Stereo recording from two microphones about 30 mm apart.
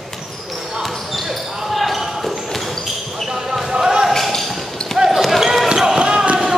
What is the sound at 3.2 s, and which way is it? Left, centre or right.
Basketball bounce, centre.